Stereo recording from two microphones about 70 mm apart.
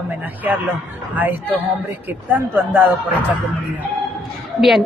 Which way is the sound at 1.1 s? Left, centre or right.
Right.